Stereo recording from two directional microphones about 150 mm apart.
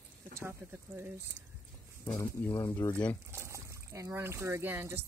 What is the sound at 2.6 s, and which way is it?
Speech, 20° left (ahead or behind).